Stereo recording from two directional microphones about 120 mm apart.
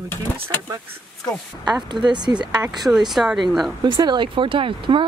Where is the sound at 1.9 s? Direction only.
40° right (ahead or behind).